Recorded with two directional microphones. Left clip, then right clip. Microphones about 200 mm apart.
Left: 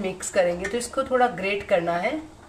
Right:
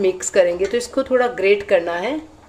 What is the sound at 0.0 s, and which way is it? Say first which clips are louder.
A woman's voice: right 7 dB; 40° right (ahead or behind).